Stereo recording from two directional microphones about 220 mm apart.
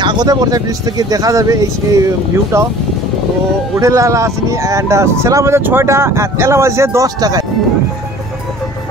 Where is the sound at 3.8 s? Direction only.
15° right (ahead or behind).